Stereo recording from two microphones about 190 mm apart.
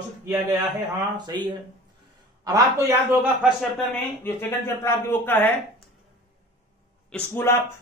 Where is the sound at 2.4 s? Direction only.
15° right (ahead or behind).